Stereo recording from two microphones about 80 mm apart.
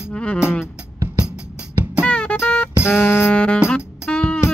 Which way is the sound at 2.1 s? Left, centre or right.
Centre.